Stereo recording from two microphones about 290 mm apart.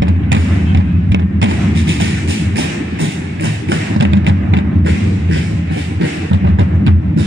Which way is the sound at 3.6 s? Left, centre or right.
Right.